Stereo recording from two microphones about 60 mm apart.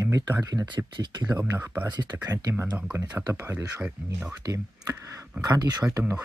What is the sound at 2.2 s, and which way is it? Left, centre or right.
Speech, right.